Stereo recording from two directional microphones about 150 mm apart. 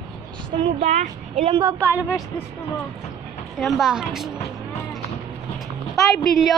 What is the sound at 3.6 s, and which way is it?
Speech, centre (ahead or behind).